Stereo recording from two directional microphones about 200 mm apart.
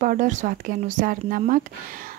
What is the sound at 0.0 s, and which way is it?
Speech, 40° right (ahead or behind).